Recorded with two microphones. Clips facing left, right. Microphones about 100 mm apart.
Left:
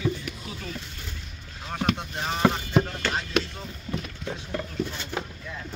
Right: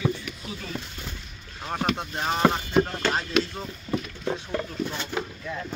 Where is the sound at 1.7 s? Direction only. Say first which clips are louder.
Right 1 dB; 20° right (ahead or behind).